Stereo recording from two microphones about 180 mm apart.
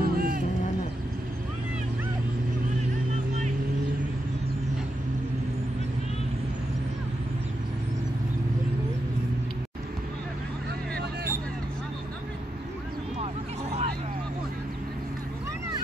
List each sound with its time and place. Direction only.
0.0 s vehicle: 55° right (ahead or behind)